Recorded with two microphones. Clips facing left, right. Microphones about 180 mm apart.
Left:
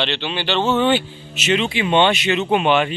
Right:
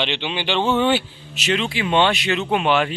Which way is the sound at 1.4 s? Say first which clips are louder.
Left 3 dB; centre (ahead or behind).